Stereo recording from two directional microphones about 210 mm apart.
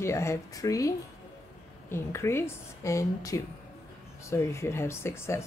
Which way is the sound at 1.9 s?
10° left (ahead or behind).